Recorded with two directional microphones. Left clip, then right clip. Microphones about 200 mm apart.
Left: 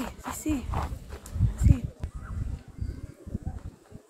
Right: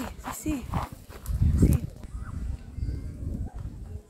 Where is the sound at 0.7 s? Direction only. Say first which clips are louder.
Even; 35° right (ahead or behind).